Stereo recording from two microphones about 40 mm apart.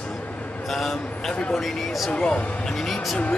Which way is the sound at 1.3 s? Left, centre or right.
Left.